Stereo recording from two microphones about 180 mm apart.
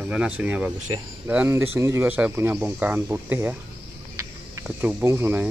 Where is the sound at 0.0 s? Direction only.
5° right (ahead or behind).